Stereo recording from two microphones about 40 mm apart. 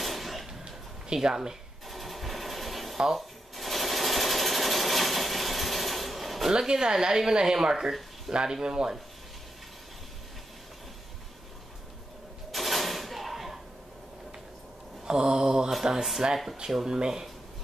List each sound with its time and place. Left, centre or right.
0.0 s a sound: centre
0.5 s a sound: centre
1.9 s machine gun: centre
3.0 s speech: centre
3.5 s sewing machine: centre
6.7 s speech: centre
12.4 s a sound: centre
15.0 s mantra: centre
15.8 s speech: centre